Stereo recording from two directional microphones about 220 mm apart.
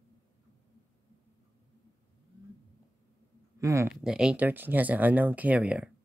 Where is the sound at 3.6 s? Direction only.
15° right (ahead or behind).